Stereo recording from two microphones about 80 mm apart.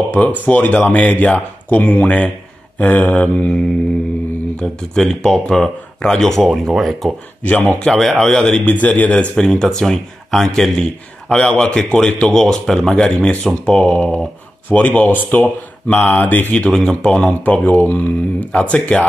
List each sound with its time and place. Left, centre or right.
0.1 s speech: centre
4.6 s speech: centre
9.3 s speech: centre